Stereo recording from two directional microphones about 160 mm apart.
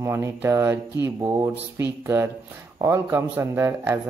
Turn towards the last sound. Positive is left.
turn(degrees=-15)  # may be behind; listen again after turning